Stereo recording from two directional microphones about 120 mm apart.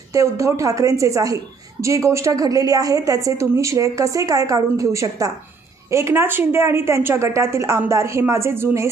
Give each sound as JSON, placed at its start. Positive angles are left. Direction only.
{"t": 0.1, "sound": "a woman's voice", "side_deg": -25}